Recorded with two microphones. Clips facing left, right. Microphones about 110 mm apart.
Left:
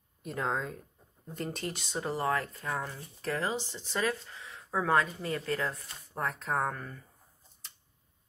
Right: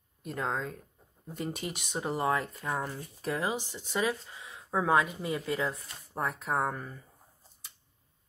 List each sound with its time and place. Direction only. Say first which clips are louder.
0.2 s speech: even; centre (ahead or behind)